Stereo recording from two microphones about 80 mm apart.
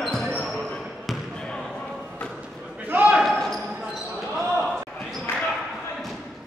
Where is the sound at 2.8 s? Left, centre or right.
Centre.